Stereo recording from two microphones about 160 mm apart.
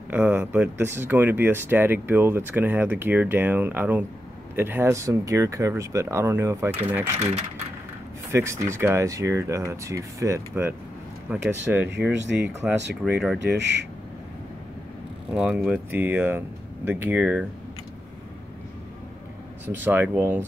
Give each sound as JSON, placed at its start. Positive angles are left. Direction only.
{"t": 0.1, "sound": "speech", "side_deg": -10}
{"t": 8.3, "sound": "speech", "side_deg": -15}
{"t": 11.9, "sound": "speech", "side_deg": -90}
{"t": 13.0, "sound": "speech", "side_deg": -5}
{"t": 13.6, "sound": "speech", "side_deg": -90}
{"t": 15.3, "sound": "speech", "side_deg": -5}
{"t": 19.6, "sound": "speech", "side_deg": -10}